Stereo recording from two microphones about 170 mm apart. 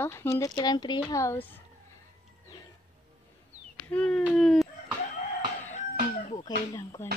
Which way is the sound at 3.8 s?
5° left (ahead or behind).